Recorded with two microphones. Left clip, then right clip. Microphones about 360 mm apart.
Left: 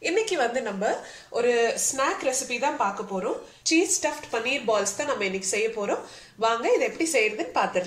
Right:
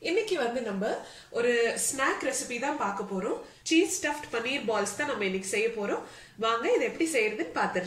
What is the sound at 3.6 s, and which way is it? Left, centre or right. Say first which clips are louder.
A woman's voice: left 3 dB; centre.